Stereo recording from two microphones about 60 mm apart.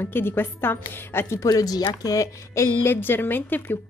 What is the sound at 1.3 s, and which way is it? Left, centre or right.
Speech, left.